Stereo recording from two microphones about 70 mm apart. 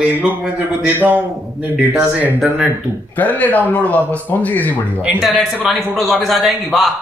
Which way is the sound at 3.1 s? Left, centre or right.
Left.